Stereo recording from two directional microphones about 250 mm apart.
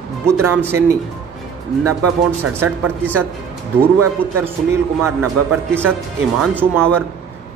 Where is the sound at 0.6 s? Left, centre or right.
Centre.